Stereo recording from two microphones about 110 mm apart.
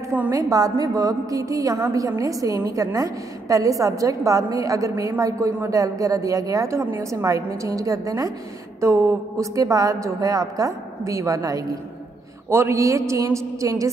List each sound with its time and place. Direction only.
0.3 s a woman's voice: 35° right (ahead or behind)